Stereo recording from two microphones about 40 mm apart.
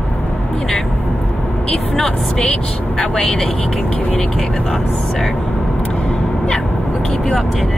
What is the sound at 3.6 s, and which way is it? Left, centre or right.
Speech, centre.